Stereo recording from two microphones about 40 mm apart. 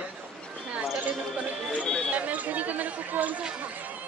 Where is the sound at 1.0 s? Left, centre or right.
Right.